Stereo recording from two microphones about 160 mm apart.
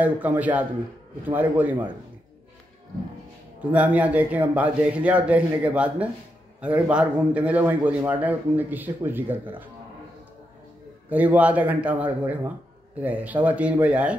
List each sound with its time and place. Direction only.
0.0 s a man's voice: 10° right (ahead or behind)
3.7 s a man's voice: 10° right (ahead or behind)
11.1 s a man's voice: 10° right (ahead or behind)